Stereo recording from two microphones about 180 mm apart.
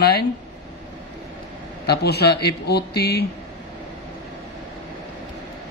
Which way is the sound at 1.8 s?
65° left (ahead or behind).